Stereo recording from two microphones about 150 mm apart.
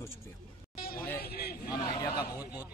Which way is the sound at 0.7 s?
85° left.